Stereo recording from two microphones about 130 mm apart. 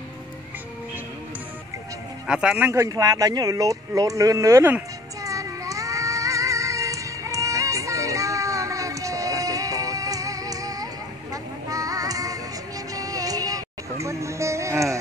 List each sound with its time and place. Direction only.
2.2 s speech: 5° right (ahead or behind)
5.2 s child singing: 25° right (ahead or behind)
11.7 s music: 25° right (ahead or behind)